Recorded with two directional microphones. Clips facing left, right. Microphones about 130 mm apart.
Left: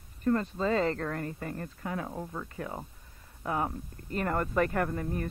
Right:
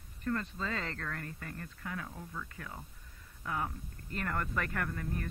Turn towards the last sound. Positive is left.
turn(degrees=25)  # may be behind; listen again after turning